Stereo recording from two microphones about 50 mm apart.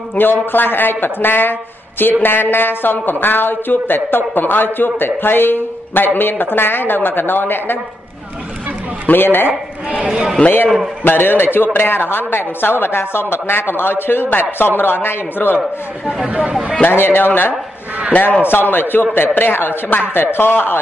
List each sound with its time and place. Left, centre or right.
0.2 s a woman's voice: left
9.0 s a woman's voice: left
9.9 s a man's voice: centre
11.1 s a woman's voice: left
16.3 s speech: right
16.9 s a woman's voice: left